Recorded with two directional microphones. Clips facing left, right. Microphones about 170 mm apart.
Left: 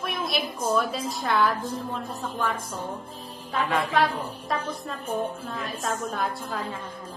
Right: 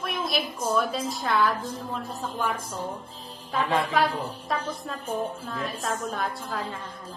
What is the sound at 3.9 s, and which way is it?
A woman's voice, centre (ahead or behind).